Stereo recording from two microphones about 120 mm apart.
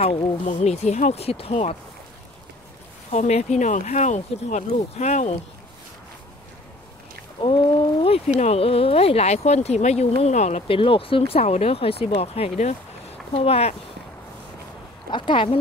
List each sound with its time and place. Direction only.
0.0 s speech: 65° left (ahead or behind)
3.1 s speech: 70° left (ahead or behind)
8.0 s speech: 55° left (ahead or behind)
10.7 s speech: 50° left (ahead or behind)
15.0 s speech: 40° left (ahead or behind)